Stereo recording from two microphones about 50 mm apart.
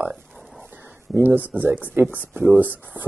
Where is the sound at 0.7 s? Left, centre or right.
Right.